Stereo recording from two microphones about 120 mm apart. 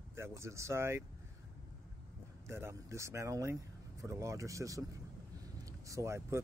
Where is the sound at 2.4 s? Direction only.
20° right (ahead or behind).